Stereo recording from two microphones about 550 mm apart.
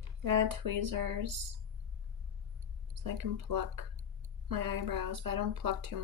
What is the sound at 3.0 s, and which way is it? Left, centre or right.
Speech, right.